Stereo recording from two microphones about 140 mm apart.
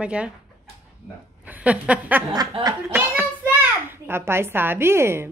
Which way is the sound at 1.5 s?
10° right (ahead or behind).